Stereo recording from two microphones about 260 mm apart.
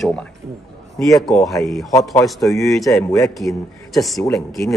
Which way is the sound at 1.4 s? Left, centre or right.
Centre.